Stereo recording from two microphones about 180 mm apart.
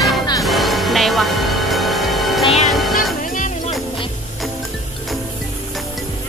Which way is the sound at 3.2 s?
45° left (ahead or behind).